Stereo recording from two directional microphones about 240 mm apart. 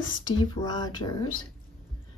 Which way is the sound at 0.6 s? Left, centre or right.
Centre.